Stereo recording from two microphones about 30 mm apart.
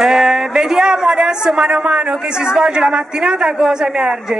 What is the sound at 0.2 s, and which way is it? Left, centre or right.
Speech, centre.